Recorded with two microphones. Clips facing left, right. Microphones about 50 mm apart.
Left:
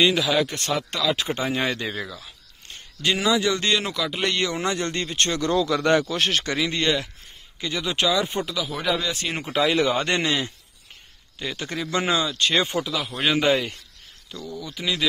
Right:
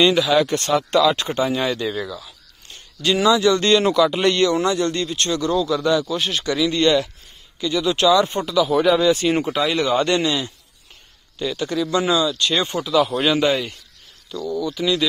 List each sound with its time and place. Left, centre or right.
0.0 s speech: centre
1.3 s speech: left; by 4.4 s centre
4.4 s speech: centre
4.6 s speech: left
5.5 s speech: left
6.4 s speech: left; by 8.4 s centre
8.5 s speech: centre
9.9 s speech: left
12.7 s speech: centre
13.2 s speech: centre